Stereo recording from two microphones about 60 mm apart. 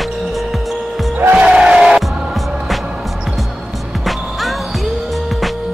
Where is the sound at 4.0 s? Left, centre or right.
Centre.